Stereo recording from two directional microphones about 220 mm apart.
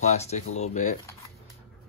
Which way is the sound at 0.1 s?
30° left (ahead or behind).